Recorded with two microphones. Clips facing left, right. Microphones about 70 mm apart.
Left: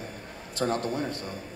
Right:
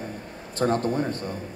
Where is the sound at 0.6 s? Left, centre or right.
Right.